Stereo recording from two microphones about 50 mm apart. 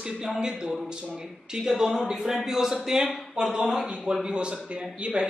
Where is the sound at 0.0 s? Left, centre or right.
Centre.